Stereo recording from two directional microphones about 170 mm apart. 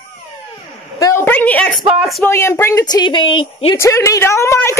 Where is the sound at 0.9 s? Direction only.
15° left (ahead or behind).